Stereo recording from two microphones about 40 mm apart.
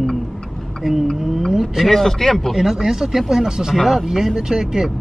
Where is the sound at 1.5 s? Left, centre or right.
Centre.